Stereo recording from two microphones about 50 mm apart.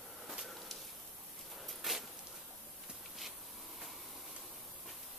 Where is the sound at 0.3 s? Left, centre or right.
Centre.